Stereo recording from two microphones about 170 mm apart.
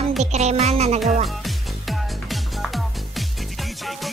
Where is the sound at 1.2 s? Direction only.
Centre (ahead or behind).